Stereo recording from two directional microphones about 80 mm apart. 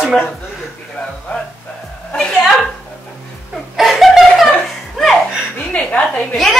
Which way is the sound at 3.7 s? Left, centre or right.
Centre.